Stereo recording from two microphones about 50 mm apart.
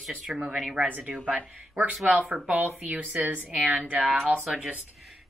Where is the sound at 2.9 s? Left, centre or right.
Right.